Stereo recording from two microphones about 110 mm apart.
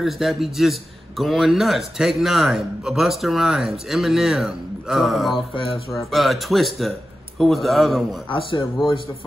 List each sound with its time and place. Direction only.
0.0 s a man's voice: centre (ahead or behind)
5.5 s speech: 55° left (ahead or behind)
6.1 s a man's voice: centre (ahead or behind)
8.3 s speech: 50° left (ahead or behind)